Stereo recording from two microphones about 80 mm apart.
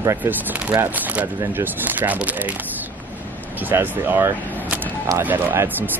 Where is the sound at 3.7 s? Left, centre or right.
Right.